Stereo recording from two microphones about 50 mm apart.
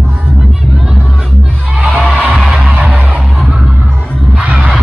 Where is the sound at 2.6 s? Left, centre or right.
Right.